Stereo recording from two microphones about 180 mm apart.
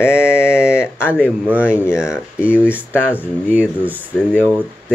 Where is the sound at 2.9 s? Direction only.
10° left (ahead or behind).